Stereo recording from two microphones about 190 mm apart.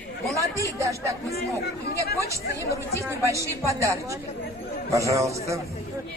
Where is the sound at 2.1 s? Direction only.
15° right (ahead or behind).